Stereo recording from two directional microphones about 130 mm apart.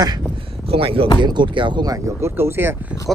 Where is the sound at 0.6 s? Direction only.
45° right (ahead or behind); by 2.8 s 15° right (ahead or behind).